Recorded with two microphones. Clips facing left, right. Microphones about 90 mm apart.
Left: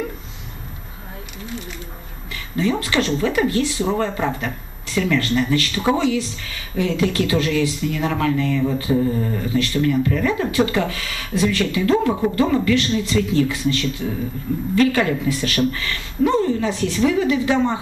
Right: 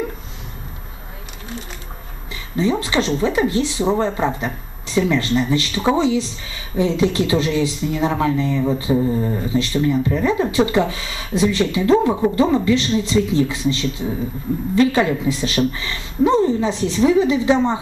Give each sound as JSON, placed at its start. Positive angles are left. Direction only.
{"t": 2.5, "sound": "speech", "side_deg": -20}